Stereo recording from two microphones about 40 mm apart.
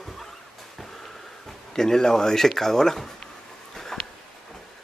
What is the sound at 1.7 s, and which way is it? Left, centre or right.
Speech, centre.